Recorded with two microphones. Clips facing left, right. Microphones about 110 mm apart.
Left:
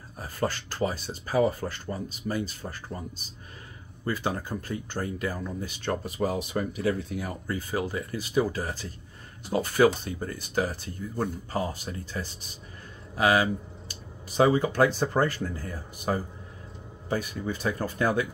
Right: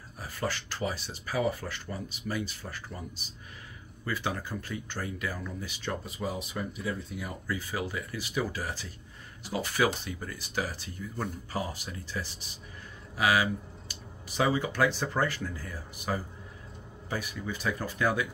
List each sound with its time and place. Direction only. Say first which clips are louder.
0.2 s speech: left 4 dB; 45° left (ahead or behind)
4.0 s speech: left 4 dB; 35° left (ahead or behind)
13.2 s a sound: left 3 dB; 40° left (ahead or behind)
15.1 s speech: left 4 dB; 45° left (ahead or behind)